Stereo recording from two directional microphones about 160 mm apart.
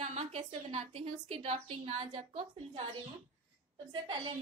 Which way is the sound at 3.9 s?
30° right (ahead or behind).